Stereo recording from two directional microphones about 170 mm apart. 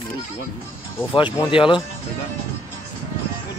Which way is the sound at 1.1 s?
30° left (ahead or behind).